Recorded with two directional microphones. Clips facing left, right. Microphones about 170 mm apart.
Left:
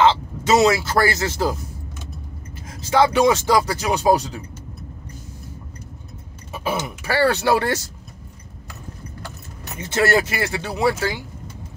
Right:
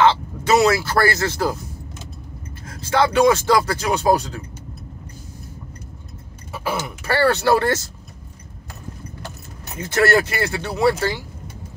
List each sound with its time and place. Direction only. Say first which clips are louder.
0.0 s speech: even; 20° left (ahead or behind)
2.7 s speech: left 1 dB; 15° left (ahead or behind)
6.5 s speech: left 1 dB; 20° left (ahead or behind)
9.8 s speech: right 1 dB; 20° left (ahead or behind)